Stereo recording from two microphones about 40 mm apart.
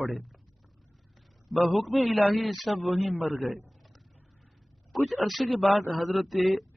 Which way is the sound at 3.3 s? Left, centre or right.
Right.